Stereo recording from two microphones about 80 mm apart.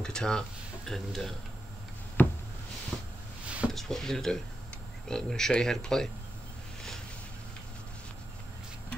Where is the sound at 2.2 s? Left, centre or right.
Left.